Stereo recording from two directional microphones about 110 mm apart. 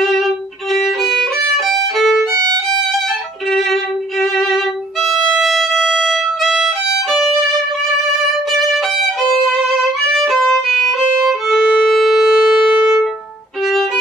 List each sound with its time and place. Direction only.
0.0 s violin: centre (ahead or behind)
2.0 s violin: centre (ahead or behind)
2.3 s violin: 40° right (ahead or behind)
3.5 s violin: centre (ahead or behind)